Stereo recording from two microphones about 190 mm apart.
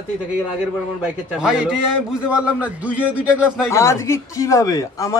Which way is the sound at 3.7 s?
15° left (ahead or behind).